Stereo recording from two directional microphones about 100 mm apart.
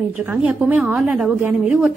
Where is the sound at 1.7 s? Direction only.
5° right (ahead or behind).